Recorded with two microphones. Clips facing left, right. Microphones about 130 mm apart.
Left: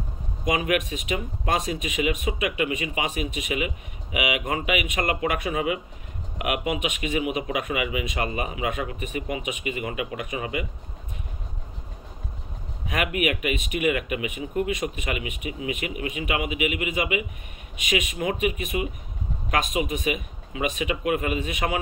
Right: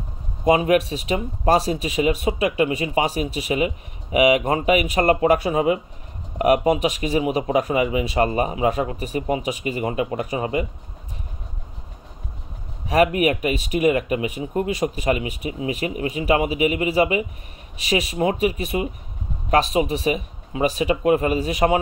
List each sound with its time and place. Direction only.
0.5 s speech: 35° right (ahead or behind)
12.8 s speech: 35° right (ahead or behind)